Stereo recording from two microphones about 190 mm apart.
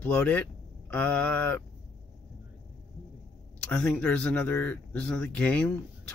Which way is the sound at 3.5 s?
5° left (ahead or behind).